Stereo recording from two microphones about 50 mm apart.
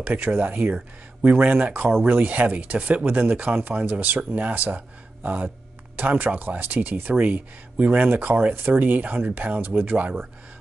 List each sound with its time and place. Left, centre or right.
0.0 s speech: right